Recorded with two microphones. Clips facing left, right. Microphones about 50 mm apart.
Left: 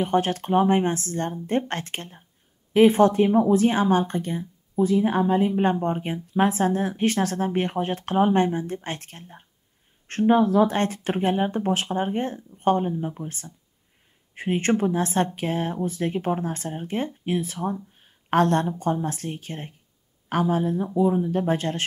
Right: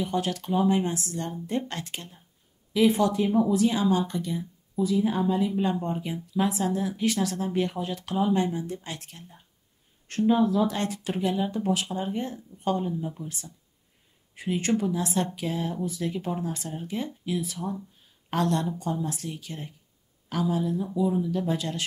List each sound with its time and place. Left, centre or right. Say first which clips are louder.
0.0 s speech: left 6 dB; left